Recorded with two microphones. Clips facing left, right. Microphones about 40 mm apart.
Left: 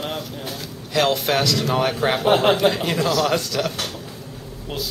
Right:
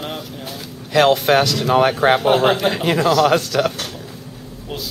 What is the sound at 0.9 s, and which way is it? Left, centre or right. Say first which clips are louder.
Speech: right 6 dB; centre.